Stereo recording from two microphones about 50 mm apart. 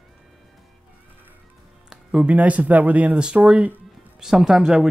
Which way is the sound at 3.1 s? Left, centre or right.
Centre.